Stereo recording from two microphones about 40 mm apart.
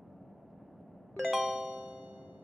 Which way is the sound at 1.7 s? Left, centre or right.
Right.